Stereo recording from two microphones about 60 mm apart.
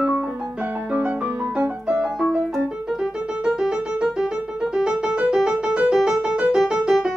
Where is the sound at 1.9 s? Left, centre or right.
Centre.